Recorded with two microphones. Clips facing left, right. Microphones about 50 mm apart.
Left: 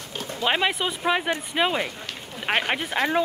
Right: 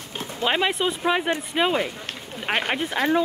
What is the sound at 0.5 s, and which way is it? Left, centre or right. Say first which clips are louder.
Speech: right 1 dB; centre.